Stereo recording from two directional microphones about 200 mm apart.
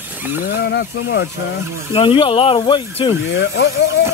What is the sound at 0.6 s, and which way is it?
Speech, 60° left (ahead or behind).